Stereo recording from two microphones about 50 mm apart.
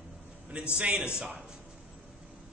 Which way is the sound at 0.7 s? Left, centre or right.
Right.